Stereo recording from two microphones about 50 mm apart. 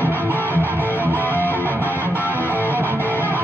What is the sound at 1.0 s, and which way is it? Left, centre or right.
Music, right.